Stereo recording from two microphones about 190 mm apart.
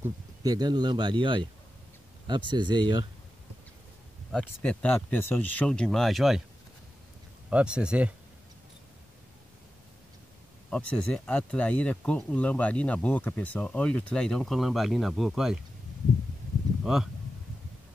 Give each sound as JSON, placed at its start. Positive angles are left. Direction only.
{"t": 0.0, "sound": "speech", "side_deg": -20}
{"t": 4.3, "sound": "speech", "side_deg": 5}
{"t": 7.4, "sound": "speech", "side_deg": -5}
{"t": 10.7, "sound": "speech", "side_deg": 5}
{"t": 16.8, "sound": "speech", "side_deg": 0}